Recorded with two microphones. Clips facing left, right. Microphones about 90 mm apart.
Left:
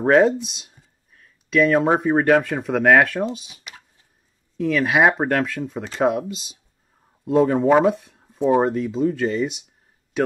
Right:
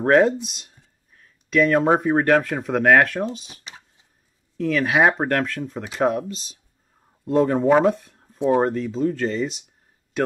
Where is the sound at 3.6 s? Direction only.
25° right (ahead or behind).